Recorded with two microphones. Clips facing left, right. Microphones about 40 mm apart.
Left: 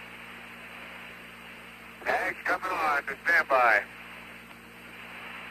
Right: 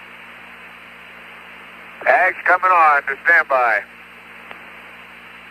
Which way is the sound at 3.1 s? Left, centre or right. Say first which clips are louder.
Right 11 dB; right.